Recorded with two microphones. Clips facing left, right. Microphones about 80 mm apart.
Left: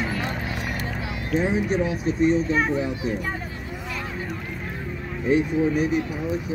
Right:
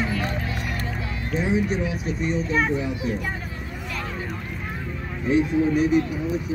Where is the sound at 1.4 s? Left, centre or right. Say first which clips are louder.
Right 1 dB; left.